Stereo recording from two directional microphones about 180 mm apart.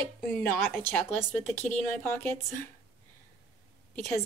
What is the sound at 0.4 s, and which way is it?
Speech, 10° left (ahead or behind).